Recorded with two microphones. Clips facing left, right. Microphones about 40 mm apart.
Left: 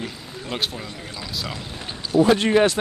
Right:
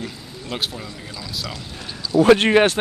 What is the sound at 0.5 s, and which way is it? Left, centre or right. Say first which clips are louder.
Speech: even; centre.